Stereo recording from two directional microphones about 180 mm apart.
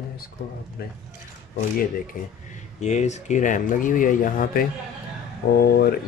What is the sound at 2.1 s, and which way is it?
Speech, 50° left (ahead or behind).